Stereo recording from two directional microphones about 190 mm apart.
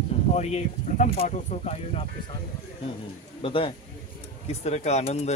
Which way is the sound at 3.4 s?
30° left (ahead or behind).